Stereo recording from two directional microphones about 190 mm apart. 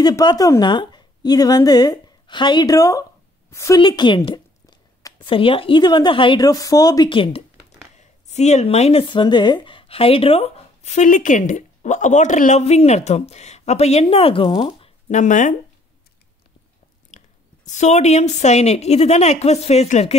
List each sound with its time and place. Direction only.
0.0 s a woman's voice: 20° left (ahead or behind); by 15.5 s 40° left (ahead or behind)
17.1 s a sound: 40° left (ahead or behind)
17.6 s a woman's voice: 40° left (ahead or behind)